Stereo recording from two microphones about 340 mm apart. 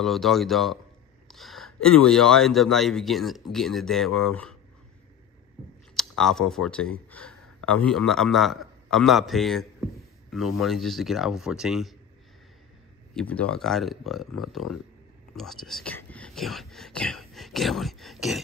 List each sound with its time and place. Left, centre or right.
0.0 s speech: centre
5.9 s speech: centre
13.1 s speech: centre